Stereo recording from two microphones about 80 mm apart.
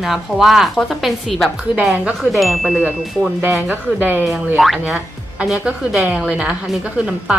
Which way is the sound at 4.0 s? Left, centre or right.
Right.